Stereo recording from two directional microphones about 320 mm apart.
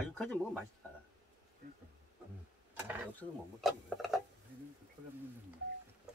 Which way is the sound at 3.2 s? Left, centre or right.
Centre.